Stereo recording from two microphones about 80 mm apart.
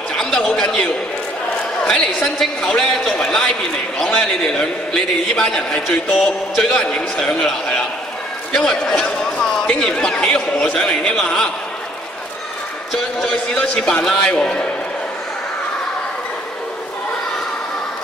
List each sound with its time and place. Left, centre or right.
0.2 s a man's voice: centre
1.9 s a man's voice: centre
12.9 s a man's voice: centre